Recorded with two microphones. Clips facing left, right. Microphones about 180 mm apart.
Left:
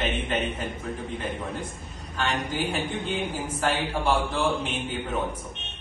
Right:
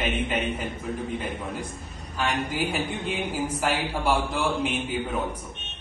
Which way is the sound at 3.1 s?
10° right (ahead or behind).